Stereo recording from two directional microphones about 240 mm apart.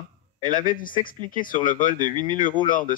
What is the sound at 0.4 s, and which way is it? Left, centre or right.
Speech, left.